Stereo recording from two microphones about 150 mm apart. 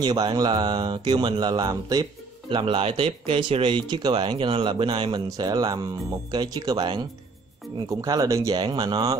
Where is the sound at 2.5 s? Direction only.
35° right (ahead or behind).